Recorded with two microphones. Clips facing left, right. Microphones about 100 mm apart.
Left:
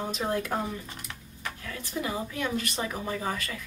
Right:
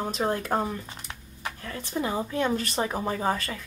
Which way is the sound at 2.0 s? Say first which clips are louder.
Right 6 dB; 35° right (ahead or behind).